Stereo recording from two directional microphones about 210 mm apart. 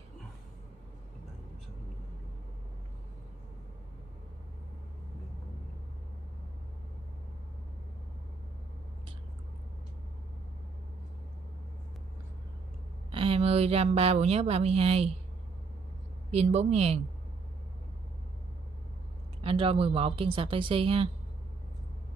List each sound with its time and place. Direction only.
13.1 s speech: 25° right (ahead or behind)
16.3 s speech: 30° right (ahead or behind)
19.4 s speech: 25° right (ahead or behind)